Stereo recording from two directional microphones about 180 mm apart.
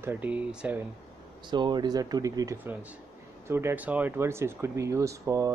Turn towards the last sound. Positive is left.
turn(degrees=-20)  # may be behind; listen again after turning